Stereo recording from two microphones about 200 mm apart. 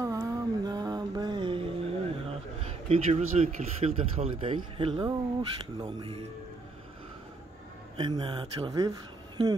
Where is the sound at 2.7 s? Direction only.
30° right (ahead or behind).